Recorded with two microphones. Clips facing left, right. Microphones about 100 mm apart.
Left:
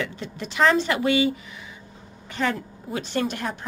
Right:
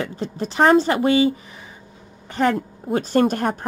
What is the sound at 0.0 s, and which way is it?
A woman's voice, 40° right (ahead or behind).